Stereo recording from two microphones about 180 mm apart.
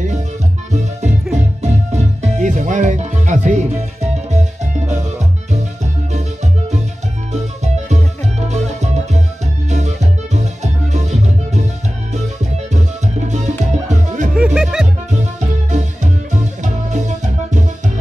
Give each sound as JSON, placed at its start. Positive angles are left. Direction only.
{"t": 0.7, "sound": "music", "side_deg": -40}
{"t": 7.3, "sound": "music", "side_deg": -40}
{"t": 14.3, "sound": "music", "side_deg": -5}
{"t": 15.7, "sound": "music", "side_deg": -40}